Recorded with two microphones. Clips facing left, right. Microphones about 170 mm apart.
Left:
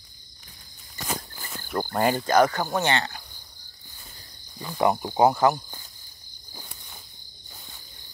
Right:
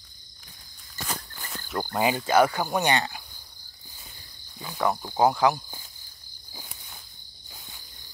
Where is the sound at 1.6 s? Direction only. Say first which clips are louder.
Left 3 dB; 10° left (ahead or behind).